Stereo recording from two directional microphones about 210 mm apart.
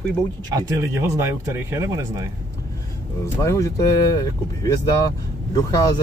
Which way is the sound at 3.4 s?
15° left (ahead or behind).